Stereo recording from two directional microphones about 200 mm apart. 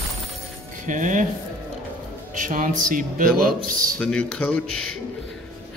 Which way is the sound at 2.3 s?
40° right (ahead or behind).